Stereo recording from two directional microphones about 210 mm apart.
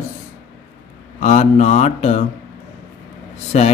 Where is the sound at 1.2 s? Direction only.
35° left (ahead or behind).